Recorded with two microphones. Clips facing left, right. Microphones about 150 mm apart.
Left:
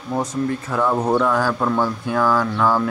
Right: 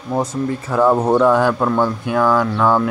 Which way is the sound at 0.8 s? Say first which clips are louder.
Right 5 dB; 35° right (ahead or behind).